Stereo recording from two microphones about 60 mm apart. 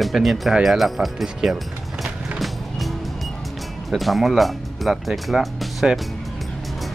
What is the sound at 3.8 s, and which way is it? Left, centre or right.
Speech, centre.